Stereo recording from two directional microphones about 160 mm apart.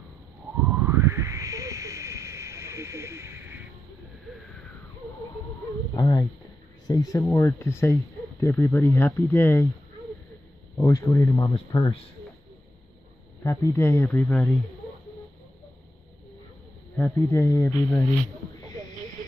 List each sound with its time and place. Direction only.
0.8 s a sound: 15° right (ahead or behind)
5.9 s a sound: 20° left (ahead or behind)
6.9 s speech: 20° left (ahead or behind)
10.8 s speech: 20° left (ahead or behind)
13.4 s speech: 15° left (ahead or behind)
16.9 s speech: 15° left (ahead or behind)